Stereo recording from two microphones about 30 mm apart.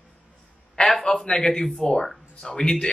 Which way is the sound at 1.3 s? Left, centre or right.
Left.